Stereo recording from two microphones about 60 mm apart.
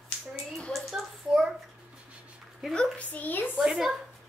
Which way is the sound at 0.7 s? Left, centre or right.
Centre.